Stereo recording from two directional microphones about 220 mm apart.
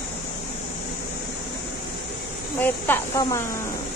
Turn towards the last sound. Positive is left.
turn(degrees=15)  # may be behind; listen again after turning